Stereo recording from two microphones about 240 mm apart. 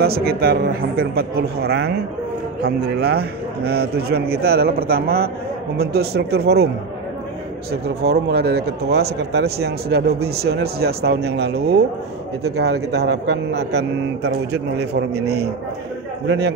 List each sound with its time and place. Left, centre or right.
0.0 s speech: right
7.7 s speech: right